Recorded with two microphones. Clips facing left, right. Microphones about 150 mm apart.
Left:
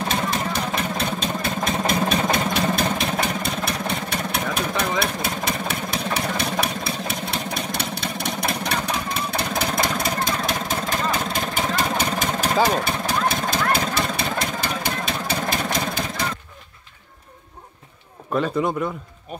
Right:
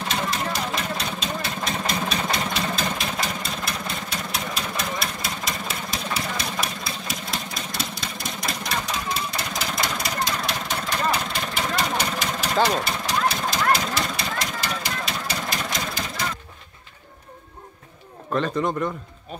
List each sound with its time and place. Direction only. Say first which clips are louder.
0.1 s engine: even; 55° left (ahead or behind)
12.6 s vehicle: left 2 dB; 55° left (ahead or behind)
15.2 s engine: left 4 dB; 55° left (ahead or behind)
18.3 s a man's voice: left 2 dB; 5° left (ahead or behind)